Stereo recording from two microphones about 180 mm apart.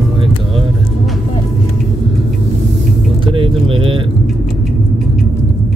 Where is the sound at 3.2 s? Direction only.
30° right (ahead or behind).